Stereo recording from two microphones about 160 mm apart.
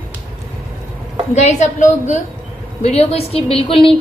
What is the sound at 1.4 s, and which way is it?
A woman's voice, 45° left (ahead or behind).